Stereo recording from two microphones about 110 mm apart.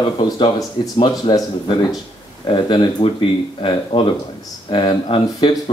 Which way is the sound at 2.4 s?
45° left (ahead or behind).